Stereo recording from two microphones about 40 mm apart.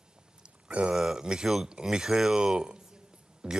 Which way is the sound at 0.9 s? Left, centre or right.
Centre.